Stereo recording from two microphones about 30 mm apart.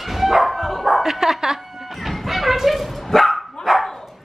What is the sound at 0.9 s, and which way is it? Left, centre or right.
Bow-wow, centre.